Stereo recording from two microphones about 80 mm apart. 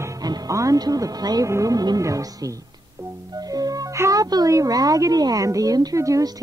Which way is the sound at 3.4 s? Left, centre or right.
Right.